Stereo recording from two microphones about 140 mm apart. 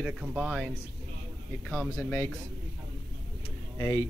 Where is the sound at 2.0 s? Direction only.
20° left (ahead or behind).